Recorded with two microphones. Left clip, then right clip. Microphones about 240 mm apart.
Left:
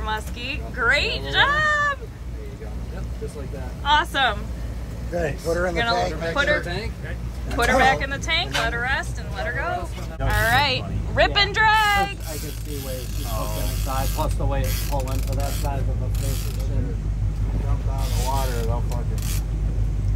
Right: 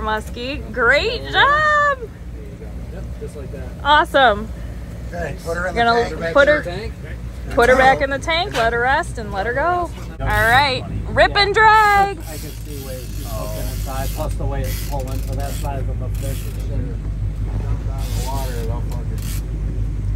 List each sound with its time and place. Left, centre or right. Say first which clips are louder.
0.0 s mechanisms: right 5 dB; centre
3.8 s mechanisms: right 7 dB; centre
5.1 s speech: left 1 dB; left
6.3 s mechanisms: right 10 dB; centre
10.5 s speech: right 4 dB; centre
13.4 s mechanisms: right 2 dB; centre